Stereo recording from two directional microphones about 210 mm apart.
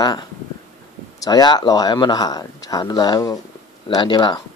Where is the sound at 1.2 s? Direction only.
20° left (ahead or behind).